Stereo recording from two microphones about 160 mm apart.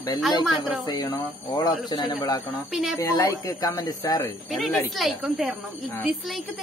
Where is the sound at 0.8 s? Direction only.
25° left (ahead or behind).